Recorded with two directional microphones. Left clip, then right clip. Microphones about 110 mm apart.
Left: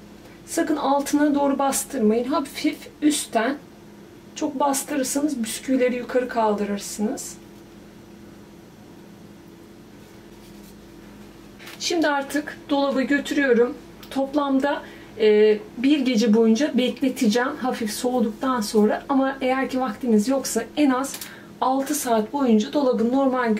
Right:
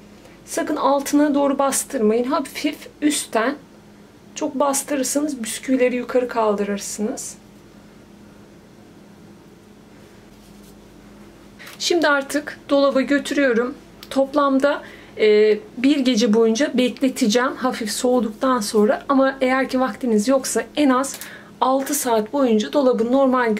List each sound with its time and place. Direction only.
0.5 s speech: 40° right (ahead or behind)
11.8 s speech: 45° right (ahead or behind)